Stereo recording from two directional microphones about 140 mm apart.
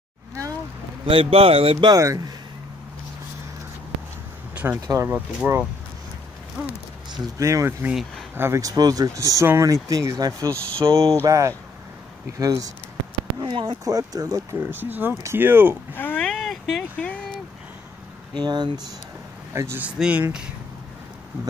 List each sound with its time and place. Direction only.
1.0 s speech: 40° right (ahead or behind)
2.0 s speech: 25° right (ahead or behind)
4.8 s speech: 20° right (ahead or behind)
7.1 s speech: 25° right (ahead or behind)
13.4 s speech: 35° right (ahead or behind); by 15.8 s 15° right (ahead or behind)
15.9 s a sound: 15° left (ahead or behind)
18.3 s speech: 30° right (ahead or behind)
19.5 s speech: 15° right (ahead or behind)